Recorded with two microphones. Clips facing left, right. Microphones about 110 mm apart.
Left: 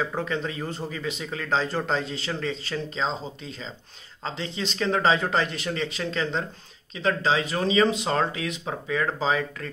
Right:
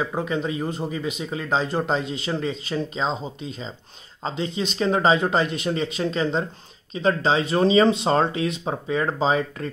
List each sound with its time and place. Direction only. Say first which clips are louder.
0.0 s speech: right 3 dB; 15° right (ahead or behind)